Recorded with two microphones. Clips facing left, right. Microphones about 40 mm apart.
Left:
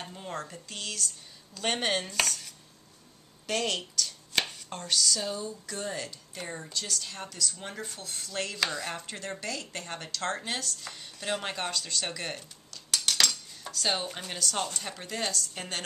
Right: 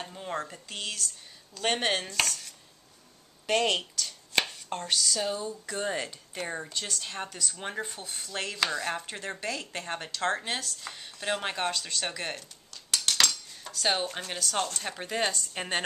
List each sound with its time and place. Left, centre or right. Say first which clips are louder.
0.0 s speech: right 3 dB; centre
5.8 s speech: right 4 dB; right; by 12.4 s centre
12.7 s cutlery: right 1 dB; centre
14.2 s a woman's voice: right 1 dB; centre
14.9 s a woman's voice: right 4 dB; centre